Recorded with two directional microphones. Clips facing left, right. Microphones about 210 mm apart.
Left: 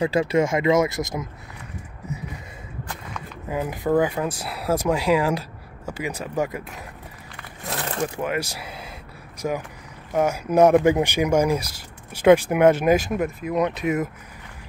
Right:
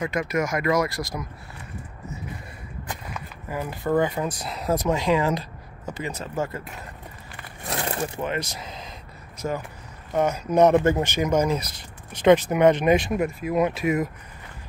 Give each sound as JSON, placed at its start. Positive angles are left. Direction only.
{"t": 0.0, "sound": "speech", "side_deg": 30}
{"t": 3.4, "sound": "speech", "side_deg": 15}
{"t": 7.7, "sound": "a sound", "side_deg": -10}
{"t": 8.2, "sound": "speech", "side_deg": 10}